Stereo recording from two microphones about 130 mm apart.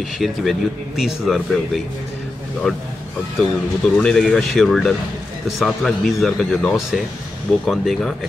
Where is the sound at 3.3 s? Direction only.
5° left (ahead or behind).